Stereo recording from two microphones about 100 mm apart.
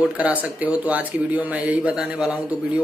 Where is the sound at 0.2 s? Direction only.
15° right (ahead or behind).